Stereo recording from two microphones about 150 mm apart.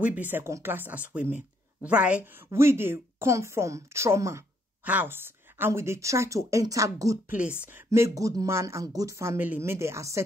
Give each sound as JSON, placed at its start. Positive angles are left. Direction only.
{"t": 0.0, "sound": "speech", "side_deg": -10}